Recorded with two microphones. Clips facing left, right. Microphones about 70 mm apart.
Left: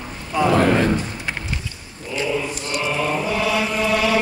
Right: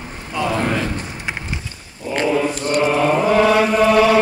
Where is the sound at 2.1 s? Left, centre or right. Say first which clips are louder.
Right 5 dB; right.